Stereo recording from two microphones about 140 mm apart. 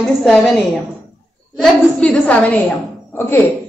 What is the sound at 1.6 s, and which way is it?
A woman's voice, 10° left (ahead or behind).